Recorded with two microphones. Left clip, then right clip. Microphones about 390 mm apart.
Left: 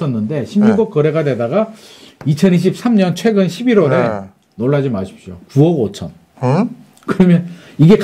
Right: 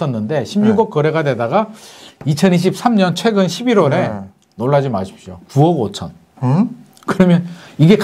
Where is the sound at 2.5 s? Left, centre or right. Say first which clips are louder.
Even; right.